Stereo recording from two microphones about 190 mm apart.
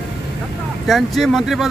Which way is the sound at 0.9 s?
Centre (ahead or behind).